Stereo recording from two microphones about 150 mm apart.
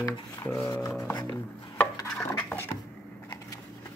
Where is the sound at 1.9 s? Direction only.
20° left (ahead or behind).